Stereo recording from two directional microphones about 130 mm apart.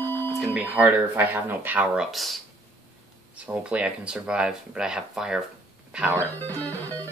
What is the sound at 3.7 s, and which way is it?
Speech, 10° right (ahead or behind).